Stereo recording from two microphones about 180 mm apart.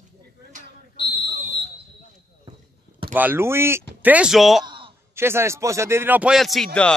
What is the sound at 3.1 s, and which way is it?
A man's voice, 10° right (ahead or behind).